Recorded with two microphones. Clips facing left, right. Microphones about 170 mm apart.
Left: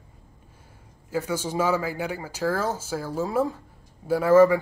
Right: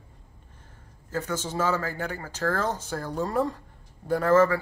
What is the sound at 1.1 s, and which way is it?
Speech, 10° left (ahead or behind).